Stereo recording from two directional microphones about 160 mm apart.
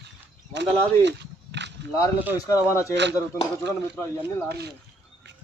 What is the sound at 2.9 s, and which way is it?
Speech, 90° right.